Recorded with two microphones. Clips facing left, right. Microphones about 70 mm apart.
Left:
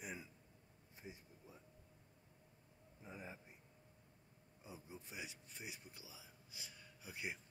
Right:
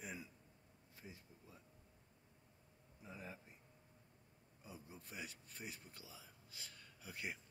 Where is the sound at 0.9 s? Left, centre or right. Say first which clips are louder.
Left 2 dB; left.